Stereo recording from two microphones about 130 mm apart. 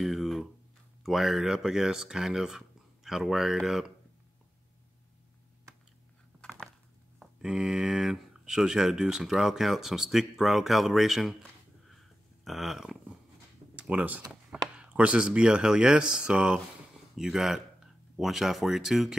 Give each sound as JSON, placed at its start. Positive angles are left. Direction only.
{"t": 0.0, "sound": "a sound", "side_deg": 0}
{"t": 1.0, "sound": "speech", "side_deg": 0}
{"t": 7.2, "sound": "speech", "side_deg": -5}
{"t": 12.4, "sound": "speech", "side_deg": 0}